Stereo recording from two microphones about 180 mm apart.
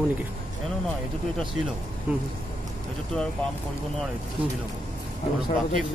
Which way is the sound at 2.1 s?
5° right (ahead or behind).